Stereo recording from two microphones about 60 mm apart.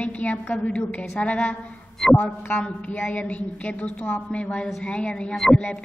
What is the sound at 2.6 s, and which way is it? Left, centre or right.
A woman's voice, left.